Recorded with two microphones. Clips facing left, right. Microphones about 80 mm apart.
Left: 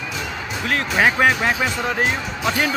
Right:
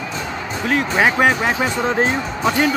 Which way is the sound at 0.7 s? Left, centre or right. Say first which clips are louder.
Right 2 dB; centre.